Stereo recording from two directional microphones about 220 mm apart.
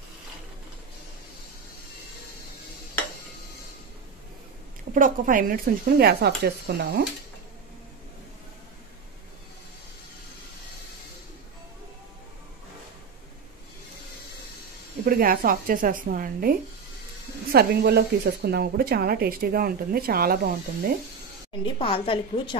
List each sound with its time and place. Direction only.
4.9 s speech: 40° right (ahead or behind)
15.0 s speech: 40° right (ahead or behind)
17.6 s speech: 45° right (ahead or behind)
21.6 s a woman's voice: 25° left (ahead or behind)